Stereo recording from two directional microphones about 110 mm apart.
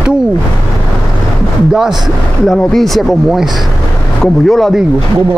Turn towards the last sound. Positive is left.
turn(degrees=0)  # may be behind; listen again after turning